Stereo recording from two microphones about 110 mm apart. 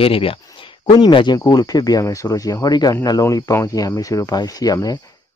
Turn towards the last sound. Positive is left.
turn(degrees=35)  # may be behind; listen again after turning